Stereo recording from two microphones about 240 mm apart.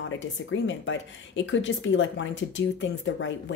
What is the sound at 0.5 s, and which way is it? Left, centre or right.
A woman's voice, left.